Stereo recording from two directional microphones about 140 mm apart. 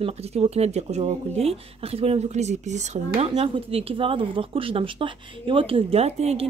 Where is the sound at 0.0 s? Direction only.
45° right (ahead or behind).